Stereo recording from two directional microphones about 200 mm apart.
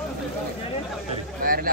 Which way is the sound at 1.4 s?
45° right (ahead or behind).